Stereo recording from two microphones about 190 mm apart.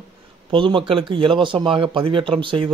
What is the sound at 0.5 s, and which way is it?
Speech, 25° right (ahead or behind).